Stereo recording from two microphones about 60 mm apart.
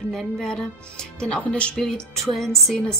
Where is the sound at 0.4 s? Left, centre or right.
Centre.